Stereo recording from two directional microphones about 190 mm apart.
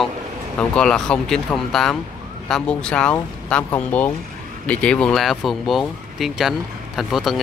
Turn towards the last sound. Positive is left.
turn(degrees=0)  # may be behind; listen again after turning